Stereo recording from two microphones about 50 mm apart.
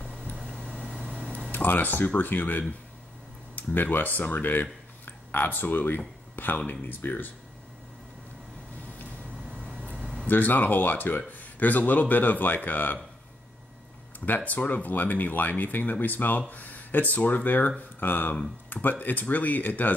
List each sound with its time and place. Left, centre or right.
1.5 s speech: left
10.2 s speech: left
14.2 s speech: left